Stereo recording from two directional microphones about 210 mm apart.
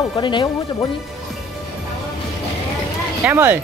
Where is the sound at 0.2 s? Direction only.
20° left (ahead or behind).